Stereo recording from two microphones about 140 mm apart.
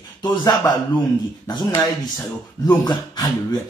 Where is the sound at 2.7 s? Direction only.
30° left (ahead or behind).